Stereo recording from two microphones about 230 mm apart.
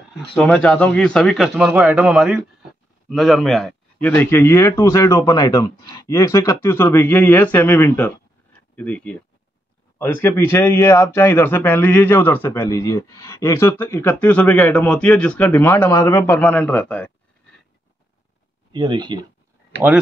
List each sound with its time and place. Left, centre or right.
0.4 s a man's voice: centre
18.7 s speech: centre